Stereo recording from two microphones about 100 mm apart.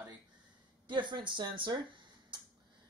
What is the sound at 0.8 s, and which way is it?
Speech, 50° right (ahead or behind).